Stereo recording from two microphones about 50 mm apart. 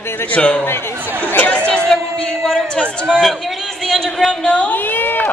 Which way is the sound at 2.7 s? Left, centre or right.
Centre.